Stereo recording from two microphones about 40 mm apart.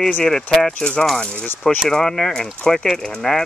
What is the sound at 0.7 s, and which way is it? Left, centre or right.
Speech, left.